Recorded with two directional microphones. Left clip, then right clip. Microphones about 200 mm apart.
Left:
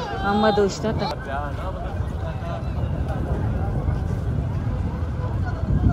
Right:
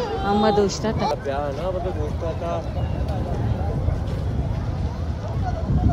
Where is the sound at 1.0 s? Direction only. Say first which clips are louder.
Right 4 dB; 50° right (ahead or behind).